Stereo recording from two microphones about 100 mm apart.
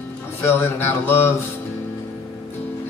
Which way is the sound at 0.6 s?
20° left (ahead or behind).